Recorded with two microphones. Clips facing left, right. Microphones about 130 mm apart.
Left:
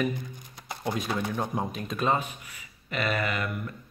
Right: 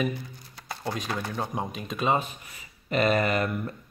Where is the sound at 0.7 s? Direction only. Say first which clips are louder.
Left 1 dB; 15° left (ahead or behind).